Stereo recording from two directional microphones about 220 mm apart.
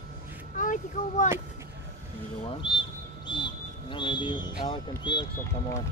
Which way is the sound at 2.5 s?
20° left (ahead or behind).